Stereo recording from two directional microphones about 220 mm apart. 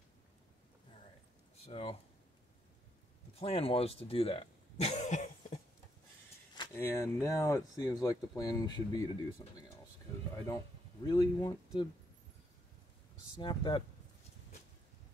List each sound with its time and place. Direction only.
1.6 s speech: 25° left (ahead or behind)
3.3 s speech: 25° left (ahead or behind)
6.5 s speech: 15° left (ahead or behind)
11.1 s speech: 15° left (ahead or behind)
13.4 s speech: 20° left (ahead or behind)